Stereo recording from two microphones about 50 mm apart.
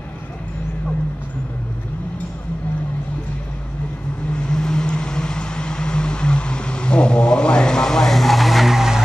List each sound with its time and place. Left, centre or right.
4.3 s vehicle: centre